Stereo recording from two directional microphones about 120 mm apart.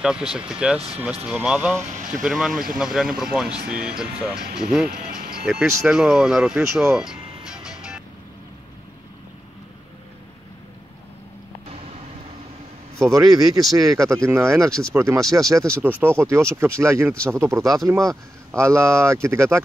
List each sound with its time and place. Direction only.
0.0 s speech: 5° right (ahead or behind)
0.7 s speech: 60° right (ahead or behind)
1.2 s speech: 10° right (ahead or behind)
1.8 s speech: 85° right
2.2 s speech: 5° right (ahead or behind)
6.6 s a man's voice: 25° right (ahead or behind)
6.9 s music: 5° right (ahead or behind)
13.0 s a man's voice: 30° right (ahead or behind)
14.7 s speech: 5° left (ahead or behind)
15.0 s a man's voice: 20° right (ahead or behind)